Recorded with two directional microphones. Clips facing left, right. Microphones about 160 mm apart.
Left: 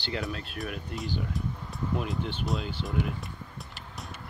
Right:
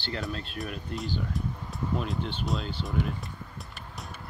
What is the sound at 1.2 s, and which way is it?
Music, centre (ahead or behind).